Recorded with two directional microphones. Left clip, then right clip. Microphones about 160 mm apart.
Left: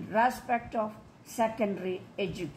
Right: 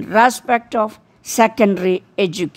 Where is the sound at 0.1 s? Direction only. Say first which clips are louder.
Right 13 dB; 90° right.